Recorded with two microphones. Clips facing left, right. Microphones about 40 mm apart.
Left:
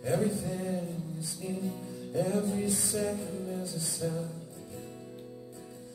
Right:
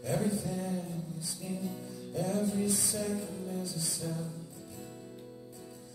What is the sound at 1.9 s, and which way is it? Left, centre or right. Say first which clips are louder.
Music: left 4 dB; left.